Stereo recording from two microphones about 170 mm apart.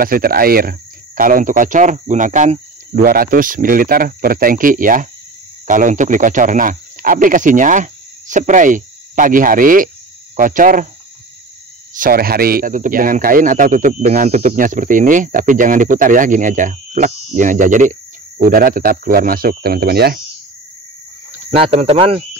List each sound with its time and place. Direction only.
0.0 s speech: 60° right (ahead or behind)
11.9 s speech: 55° right (ahead or behind)
21.3 s speech: 40° right (ahead or behind)